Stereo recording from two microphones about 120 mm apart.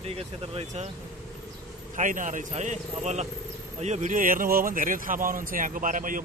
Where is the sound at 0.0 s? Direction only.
60° right (ahead or behind).